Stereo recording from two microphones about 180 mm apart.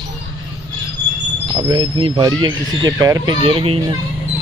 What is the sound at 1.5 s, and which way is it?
Speech, 20° right (ahead or behind).